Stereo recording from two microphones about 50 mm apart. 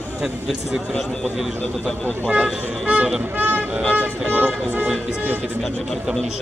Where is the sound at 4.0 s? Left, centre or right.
Right.